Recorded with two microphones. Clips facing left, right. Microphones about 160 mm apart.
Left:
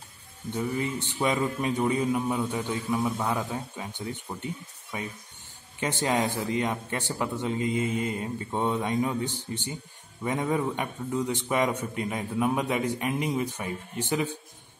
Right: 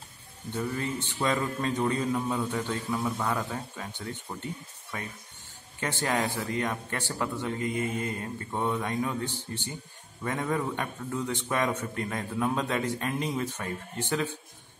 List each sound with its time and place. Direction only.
0.5 s a man's voice: 15° left (ahead or behind)